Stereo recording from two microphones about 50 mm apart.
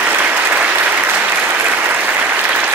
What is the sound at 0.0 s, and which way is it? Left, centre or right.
Applause, right.